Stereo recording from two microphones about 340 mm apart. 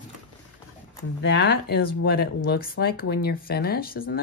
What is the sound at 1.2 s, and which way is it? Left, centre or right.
Speech, left.